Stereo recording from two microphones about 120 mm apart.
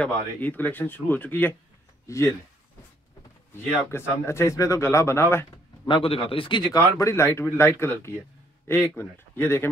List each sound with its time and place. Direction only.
0.0 s speech: 15° left (ahead or behind)
3.9 s speech: 20° left (ahead or behind)
5.9 s speech: 45° left (ahead or behind); by 9.7 s 20° left (ahead or behind)